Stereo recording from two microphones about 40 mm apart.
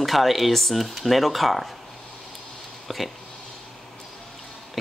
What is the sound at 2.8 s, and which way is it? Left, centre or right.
Speech, centre.